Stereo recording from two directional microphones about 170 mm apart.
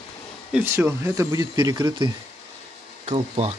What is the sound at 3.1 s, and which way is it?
Speech, 40° right (ahead or behind).